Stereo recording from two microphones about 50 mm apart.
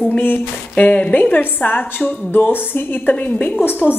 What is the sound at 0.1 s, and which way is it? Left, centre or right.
A woman's voice, left.